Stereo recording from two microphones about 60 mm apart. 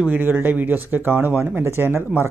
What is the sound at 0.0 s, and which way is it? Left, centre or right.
Speech, right.